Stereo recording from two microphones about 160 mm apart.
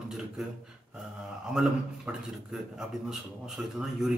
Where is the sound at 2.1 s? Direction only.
5° right (ahead or behind).